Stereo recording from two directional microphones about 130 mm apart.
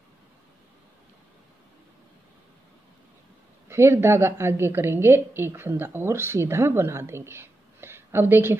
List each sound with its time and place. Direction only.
3.6 s a woman's voice: 20° right (ahead or behind)